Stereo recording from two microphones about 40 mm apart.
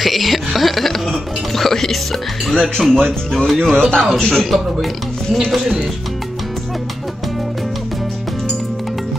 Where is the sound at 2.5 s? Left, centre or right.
Centre.